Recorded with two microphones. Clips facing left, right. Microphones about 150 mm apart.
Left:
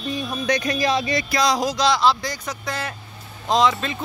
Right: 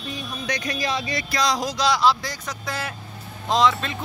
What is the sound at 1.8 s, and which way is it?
Speech, 10° right (ahead or behind).